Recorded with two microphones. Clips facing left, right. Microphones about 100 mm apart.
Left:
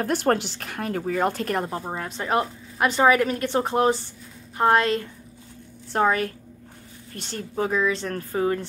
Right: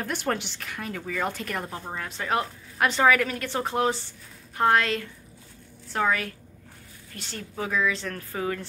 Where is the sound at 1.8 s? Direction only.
25° left (ahead or behind).